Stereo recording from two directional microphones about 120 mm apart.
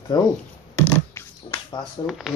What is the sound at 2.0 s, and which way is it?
Speech, centre (ahead or behind).